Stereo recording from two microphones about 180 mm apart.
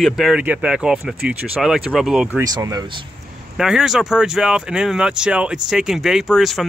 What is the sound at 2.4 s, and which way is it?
Speech, 20° right (ahead or behind).